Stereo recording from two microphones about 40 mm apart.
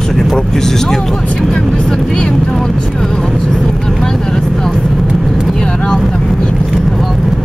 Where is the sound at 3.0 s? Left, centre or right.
Centre.